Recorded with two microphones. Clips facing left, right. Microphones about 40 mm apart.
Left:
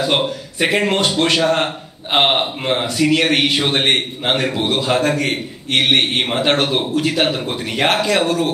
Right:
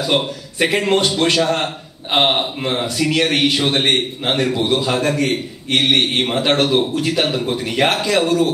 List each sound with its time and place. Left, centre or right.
0.0 s a man's voice: left
1.4 s a man's voice: left
2.1 s a man's voice: left